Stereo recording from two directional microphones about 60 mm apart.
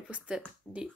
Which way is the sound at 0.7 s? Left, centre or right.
Centre.